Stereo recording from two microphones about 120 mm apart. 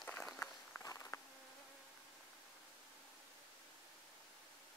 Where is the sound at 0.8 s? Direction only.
25° left (ahead or behind).